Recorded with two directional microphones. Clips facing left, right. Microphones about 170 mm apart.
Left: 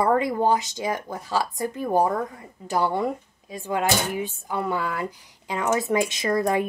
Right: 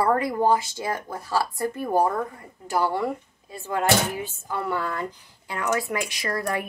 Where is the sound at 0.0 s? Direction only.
20° left (ahead or behind).